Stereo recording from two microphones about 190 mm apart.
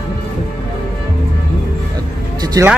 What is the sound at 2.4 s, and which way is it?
Speech, 20° right (ahead or behind).